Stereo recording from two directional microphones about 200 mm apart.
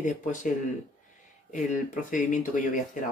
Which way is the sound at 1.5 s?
40° left (ahead or behind).